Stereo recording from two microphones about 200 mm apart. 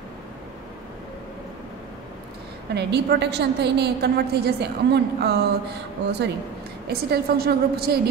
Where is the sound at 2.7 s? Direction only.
55° right (ahead or behind).